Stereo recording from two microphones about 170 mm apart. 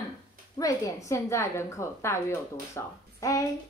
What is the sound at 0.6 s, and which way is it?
A woman's voice, 20° left (ahead or behind).